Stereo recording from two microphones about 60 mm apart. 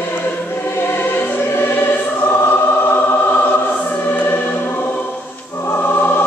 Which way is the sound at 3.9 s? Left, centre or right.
Left.